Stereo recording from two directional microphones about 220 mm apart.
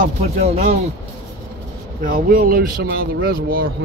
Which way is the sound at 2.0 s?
40° right (ahead or behind).